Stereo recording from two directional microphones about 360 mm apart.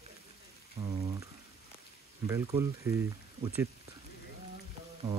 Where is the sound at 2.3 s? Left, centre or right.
Centre.